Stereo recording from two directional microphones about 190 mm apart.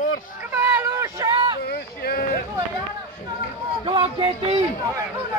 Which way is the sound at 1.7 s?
55° left (ahead or behind).